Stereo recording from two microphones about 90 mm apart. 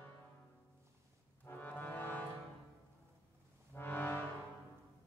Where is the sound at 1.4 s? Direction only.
20° left (ahead or behind).